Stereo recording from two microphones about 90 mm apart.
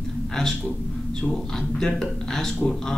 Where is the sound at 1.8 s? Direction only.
5° left (ahead or behind).